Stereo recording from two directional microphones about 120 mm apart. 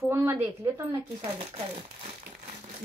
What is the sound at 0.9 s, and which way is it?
Speech, 50° right (ahead or behind).